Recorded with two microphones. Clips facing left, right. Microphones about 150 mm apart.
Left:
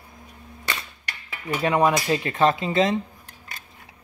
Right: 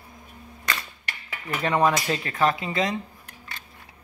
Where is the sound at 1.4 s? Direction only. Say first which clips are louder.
Left 2 dB; 10° left (ahead or behind).